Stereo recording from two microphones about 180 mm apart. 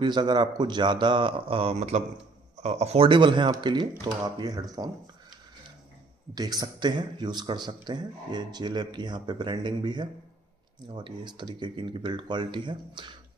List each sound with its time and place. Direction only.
0.0 s a man's voice: 25° right (ahead or behind)
6.3 s a man's voice: 20° right (ahead or behind)